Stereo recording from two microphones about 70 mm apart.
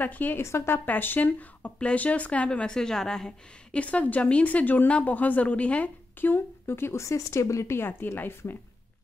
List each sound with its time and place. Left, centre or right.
0.0 s speech: left
0.4 s speech: left
0.8 s speech: left
6.3 s speech: left